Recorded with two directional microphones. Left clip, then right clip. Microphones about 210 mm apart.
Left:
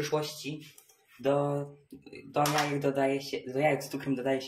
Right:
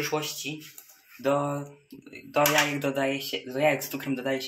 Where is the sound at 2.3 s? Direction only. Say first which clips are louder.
Right 5 dB; 5° right (ahead or behind).